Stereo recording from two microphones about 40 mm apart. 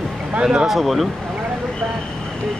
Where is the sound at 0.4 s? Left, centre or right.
Right.